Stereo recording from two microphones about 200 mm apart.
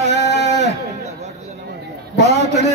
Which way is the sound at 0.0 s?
35° right (ahead or behind).